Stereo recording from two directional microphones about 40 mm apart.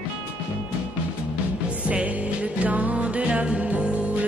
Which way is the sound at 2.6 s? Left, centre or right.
Right.